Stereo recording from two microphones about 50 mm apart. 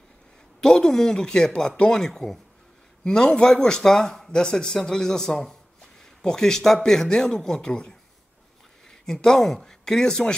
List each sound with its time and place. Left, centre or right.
0.6 s a man's voice: centre
9.0 s a man's voice: centre